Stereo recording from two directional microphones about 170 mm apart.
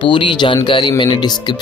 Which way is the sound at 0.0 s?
30° left (ahead or behind).